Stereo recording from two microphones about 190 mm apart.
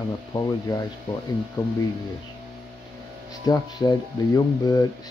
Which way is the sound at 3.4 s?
20° left (ahead or behind).